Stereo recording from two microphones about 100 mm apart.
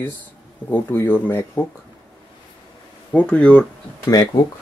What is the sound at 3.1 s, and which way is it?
Speech, 10° left (ahead or behind).